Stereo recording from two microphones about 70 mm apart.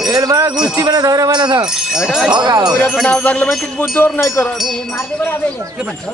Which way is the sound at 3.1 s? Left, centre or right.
Centre.